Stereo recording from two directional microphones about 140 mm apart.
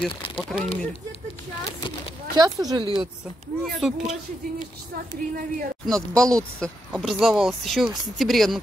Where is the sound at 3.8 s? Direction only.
5° right (ahead or behind).